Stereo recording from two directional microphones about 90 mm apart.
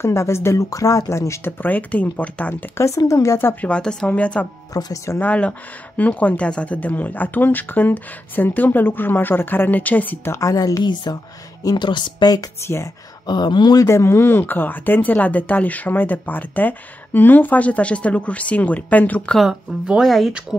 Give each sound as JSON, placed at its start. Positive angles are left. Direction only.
{"t": 0.0, "sound": "speech", "side_deg": 30}
{"t": 1.6, "sound": "speech", "side_deg": 20}
{"t": 2.8, "sound": "speech", "side_deg": 35}
{"t": 3.6, "sound": "speech", "side_deg": 10}
{"t": 4.7, "sound": "speech", "side_deg": 45}
{"t": 5.2, "sound": "speech", "side_deg": 15}
{"t": 10.5, "sound": "speech", "side_deg": 45}
{"t": 12.6, "sound": "speech", "side_deg": 30}
{"t": 13.3, "sound": "speech", "side_deg": 55}
{"t": 13.7, "sound": "speech", "side_deg": 30}
{"t": 19.3, "sound": "speech", "side_deg": -5}